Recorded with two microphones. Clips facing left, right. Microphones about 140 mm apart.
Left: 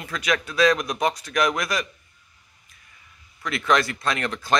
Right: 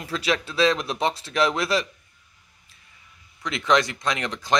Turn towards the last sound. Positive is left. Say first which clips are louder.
# left 1 dB
turn(degrees=-20)  # may be behind; listen again after turning